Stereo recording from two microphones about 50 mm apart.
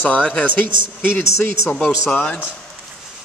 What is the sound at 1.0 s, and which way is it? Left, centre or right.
Speech, left.